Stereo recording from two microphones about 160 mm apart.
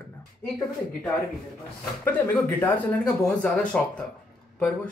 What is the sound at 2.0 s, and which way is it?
Speech, 10° left (ahead or behind).